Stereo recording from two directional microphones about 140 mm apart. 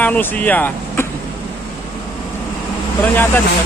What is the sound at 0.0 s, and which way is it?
Speech, 10° left (ahead or behind).